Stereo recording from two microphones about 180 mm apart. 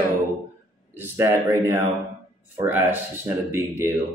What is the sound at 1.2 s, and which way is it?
A man's voice, 15° right (ahead or behind).